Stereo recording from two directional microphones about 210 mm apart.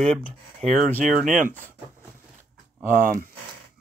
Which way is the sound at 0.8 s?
10° left (ahead or behind).